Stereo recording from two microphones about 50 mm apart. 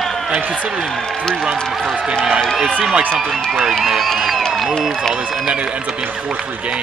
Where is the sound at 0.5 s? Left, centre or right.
Centre.